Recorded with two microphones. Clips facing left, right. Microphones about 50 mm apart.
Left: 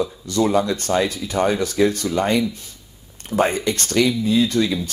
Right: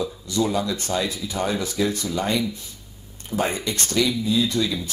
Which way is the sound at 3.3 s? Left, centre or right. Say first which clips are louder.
Left 6 dB; centre.